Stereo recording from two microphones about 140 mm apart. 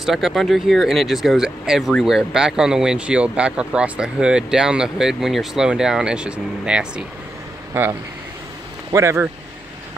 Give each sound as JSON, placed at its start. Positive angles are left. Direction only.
{"t": 0.0, "sound": "speech", "side_deg": 0}
{"t": 8.9, "sound": "speech", "side_deg": -20}